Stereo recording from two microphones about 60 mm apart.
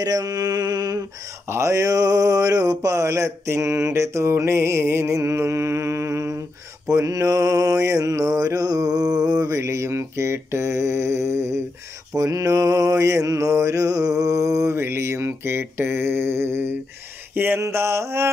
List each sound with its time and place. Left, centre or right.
0.0 s mantra: right
1.5 s mantra: right
6.9 s mantra: right
12.2 s mantra: right
14.8 s mantra: right
17.3 s a sound: right
17.6 s mantra: right